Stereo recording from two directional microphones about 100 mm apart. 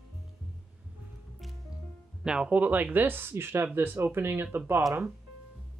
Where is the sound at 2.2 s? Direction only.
10° right (ahead or behind).